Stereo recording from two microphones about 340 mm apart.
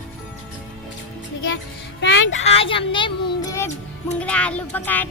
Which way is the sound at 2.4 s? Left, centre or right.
Centre.